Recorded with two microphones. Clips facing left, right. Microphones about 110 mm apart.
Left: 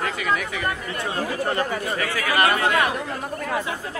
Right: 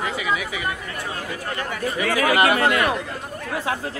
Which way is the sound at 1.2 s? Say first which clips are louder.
Left 9 dB; 35° left (ahead or behind).